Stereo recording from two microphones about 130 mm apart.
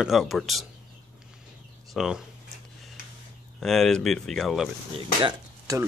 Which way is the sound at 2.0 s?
5° right (ahead or behind).